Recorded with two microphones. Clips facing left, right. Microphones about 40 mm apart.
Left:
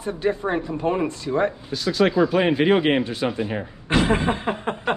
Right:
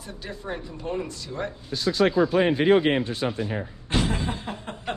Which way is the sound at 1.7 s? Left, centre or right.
Left.